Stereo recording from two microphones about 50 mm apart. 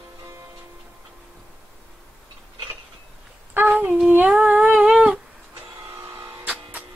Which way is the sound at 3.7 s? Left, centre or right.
Right.